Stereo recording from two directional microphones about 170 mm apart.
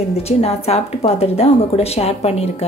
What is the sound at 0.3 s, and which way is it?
A woman's voice, 40° left (ahead or behind).